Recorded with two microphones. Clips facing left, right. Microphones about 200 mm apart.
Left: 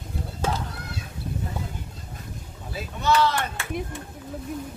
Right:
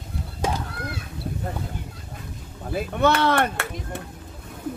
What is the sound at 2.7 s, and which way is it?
Speech, 55° right (ahead or behind).